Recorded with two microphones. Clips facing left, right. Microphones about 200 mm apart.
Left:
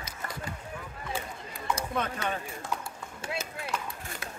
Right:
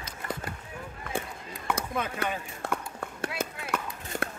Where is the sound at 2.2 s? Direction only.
60° right (ahead or behind).